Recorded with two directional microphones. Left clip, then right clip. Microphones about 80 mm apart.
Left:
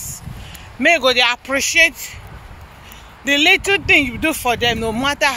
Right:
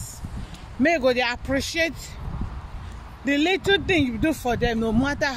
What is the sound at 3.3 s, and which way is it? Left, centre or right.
Speech, centre.